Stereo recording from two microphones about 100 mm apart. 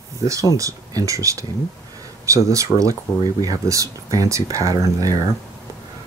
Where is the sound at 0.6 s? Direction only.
35° right (ahead or behind).